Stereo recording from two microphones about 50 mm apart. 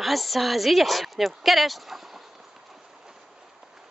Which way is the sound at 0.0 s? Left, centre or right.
Centre.